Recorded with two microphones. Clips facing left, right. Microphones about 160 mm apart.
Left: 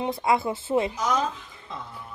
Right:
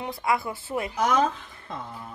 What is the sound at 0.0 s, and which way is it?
Speech, 25° left (ahead or behind).